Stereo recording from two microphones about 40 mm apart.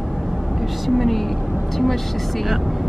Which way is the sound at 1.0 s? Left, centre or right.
Centre.